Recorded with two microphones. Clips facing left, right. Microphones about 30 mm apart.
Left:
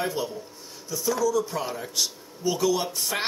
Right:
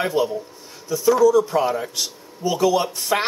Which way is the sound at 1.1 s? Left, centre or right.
Centre.